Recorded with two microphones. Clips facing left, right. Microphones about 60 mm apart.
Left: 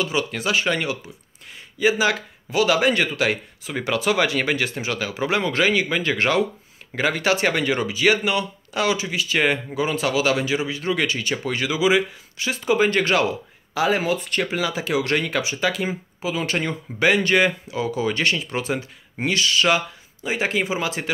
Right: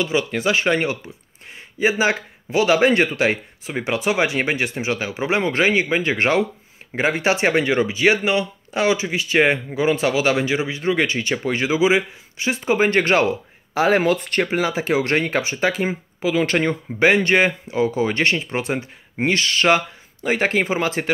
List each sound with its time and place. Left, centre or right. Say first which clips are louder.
0.0 s speech: right 3 dB; right
17.0 s speech: right 2 dB; right